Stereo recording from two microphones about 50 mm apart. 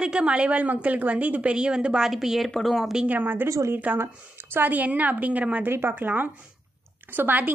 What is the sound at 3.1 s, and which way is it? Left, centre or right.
Speech, right.